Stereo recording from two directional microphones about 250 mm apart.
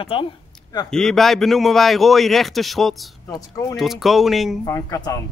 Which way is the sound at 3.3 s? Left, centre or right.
Centre.